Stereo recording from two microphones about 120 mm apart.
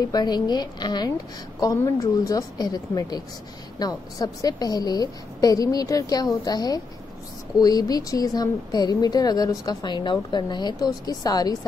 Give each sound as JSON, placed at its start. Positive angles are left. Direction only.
{"t": 0.1, "sound": "a woman's voice", "side_deg": 35}